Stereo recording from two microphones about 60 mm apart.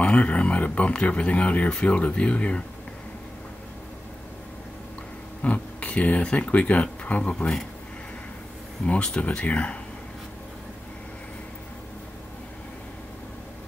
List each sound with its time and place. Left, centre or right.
0.0 s speech: left
5.4 s speech: left
7.3 s speech: centre
8.8 s speech: centre